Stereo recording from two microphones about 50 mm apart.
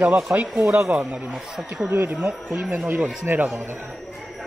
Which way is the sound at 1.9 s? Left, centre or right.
Right.